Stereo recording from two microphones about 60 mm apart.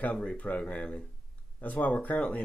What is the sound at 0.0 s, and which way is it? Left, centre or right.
Speech, centre.